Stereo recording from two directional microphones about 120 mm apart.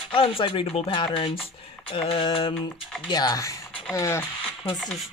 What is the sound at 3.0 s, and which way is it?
Speech, 35° left (ahead or behind).